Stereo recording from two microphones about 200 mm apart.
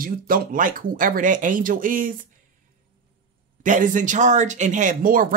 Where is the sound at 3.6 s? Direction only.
40° right (ahead or behind).